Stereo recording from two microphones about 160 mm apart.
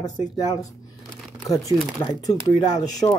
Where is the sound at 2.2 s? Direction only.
25° left (ahead or behind).